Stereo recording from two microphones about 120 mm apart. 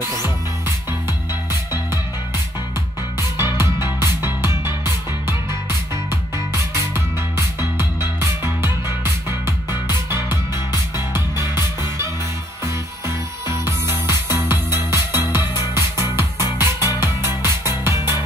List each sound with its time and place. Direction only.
3.5 s music: 20° right (ahead or behind)
10.5 s music: 35° left (ahead or behind)
13.5 s music: 20° right (ahead or behind)